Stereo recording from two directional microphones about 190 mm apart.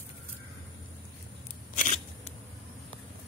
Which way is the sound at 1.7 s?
40° left (ahead or behind).